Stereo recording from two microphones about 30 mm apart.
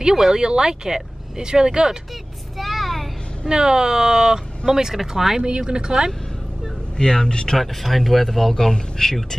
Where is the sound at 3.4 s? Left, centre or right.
Right.